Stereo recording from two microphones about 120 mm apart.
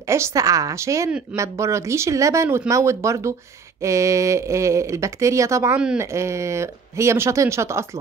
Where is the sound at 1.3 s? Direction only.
25° right (ahead or behind).